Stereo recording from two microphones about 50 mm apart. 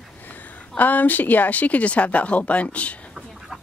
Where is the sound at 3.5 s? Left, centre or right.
Centre.